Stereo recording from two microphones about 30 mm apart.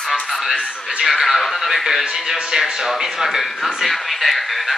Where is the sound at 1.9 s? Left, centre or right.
Centre.